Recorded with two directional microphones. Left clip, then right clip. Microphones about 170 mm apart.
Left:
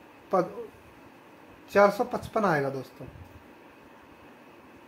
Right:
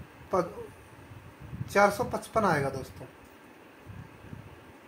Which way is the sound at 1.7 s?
30° left (ahead or behind).